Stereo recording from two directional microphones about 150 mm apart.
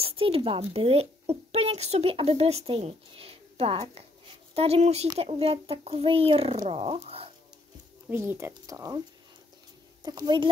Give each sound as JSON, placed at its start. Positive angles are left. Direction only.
{"t": 0.0, "sound": "a woman's voice", "side_deg": -40}
{"t": 8.1, "sound": "speech", "side_deg": -15}
{"t": 10.0, "sound": "a woman's voice", "side_deg": -30}